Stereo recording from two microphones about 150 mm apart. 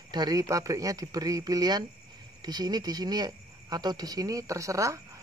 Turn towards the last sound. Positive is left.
turn(degrees=-20)  # may be behind; listen again after turning